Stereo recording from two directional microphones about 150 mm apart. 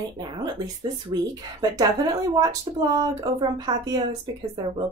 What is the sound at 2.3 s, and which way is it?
Speech, 25° right (ahead or behind).